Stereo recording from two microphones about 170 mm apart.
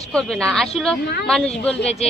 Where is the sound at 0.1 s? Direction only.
5° left (ahead or behind).